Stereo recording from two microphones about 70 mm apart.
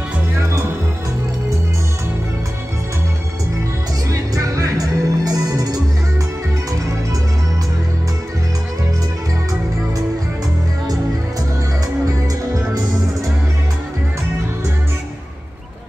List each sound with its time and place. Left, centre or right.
4.1 s music: right